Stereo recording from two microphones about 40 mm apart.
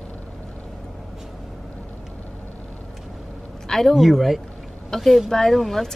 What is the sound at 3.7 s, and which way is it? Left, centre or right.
Speech, centre.